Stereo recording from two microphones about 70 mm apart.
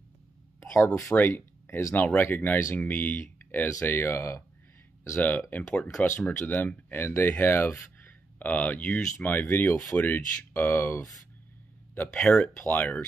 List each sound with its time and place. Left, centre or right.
0.6 s speech: left
2.2 s speech: left
5.2 s speech: left
5.7 s speech: centre
6.1 s speech: left
8.0 s speech: left
12.1 s speech: centre
12.6 s speech: left